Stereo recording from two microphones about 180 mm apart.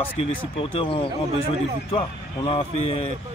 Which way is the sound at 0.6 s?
30° left (ahead or behind).